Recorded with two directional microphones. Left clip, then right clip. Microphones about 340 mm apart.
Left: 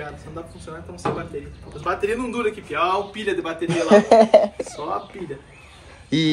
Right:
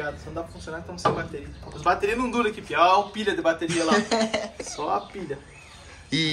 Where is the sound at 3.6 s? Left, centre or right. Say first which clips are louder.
Left 7 dB; centre.